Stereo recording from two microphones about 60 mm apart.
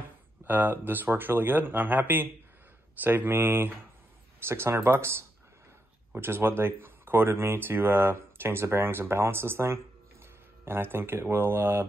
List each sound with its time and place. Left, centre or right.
0.5 s speech: right